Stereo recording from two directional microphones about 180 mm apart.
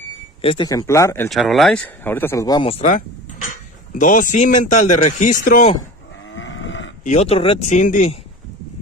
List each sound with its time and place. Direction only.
0.4 s speech: 30° left (ahead or behind)
0.7 s speech: 20° left (ahead or behind)
1.3 s speech: centre (ahead or behind)
2.0 s speech: 10° left (ahead or behind)
2.9 s speech: 50° left (ahead or behind)
6.3 s livestock: 90° left
7.1 s speech: 35° left (ahead or behind)